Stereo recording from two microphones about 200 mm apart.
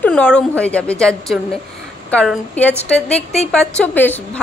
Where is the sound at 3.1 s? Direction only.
35° left (ahead or behind).